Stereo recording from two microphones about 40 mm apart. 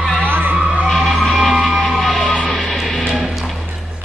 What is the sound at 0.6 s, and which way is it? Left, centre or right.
Music, right.